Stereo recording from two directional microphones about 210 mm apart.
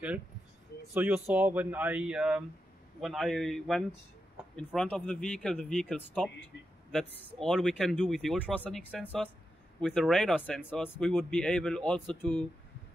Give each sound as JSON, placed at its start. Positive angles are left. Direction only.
{"t": 0.9, "sound": "speech", "side_deg": -5}